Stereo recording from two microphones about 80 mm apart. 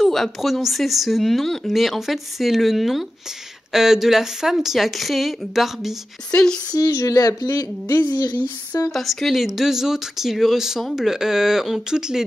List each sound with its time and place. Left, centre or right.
0.0 s speech: centre
6.3 s speech: centre
6.7 s speech: left
8.9 s speech: centre